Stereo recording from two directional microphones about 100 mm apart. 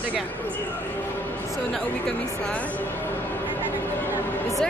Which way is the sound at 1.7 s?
5° left (ahead or behind).